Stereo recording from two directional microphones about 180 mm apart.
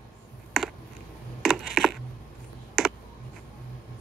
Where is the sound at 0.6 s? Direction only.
Centre (ahead or behind).